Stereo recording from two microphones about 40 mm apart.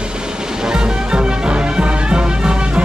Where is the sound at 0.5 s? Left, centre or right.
Centre.